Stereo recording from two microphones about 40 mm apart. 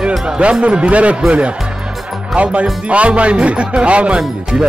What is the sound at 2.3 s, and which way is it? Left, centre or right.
Speech, right.